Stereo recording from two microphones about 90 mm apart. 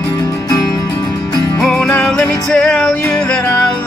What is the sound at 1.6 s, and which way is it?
Music, 5° left (ahead or behind).